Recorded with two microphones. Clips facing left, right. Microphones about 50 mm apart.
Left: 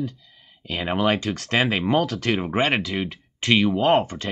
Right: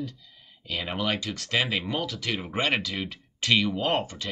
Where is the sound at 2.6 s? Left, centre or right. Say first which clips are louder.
Left 4 dB; centre.